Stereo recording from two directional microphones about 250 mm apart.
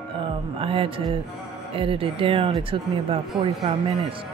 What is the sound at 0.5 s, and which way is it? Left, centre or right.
Speech, right.